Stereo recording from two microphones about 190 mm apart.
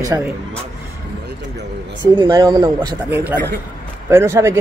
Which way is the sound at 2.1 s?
25° right (ahead or behind).